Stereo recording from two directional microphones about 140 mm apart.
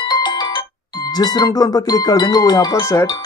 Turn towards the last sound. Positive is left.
turn(degrees=25)  # may be behind; listen again after turning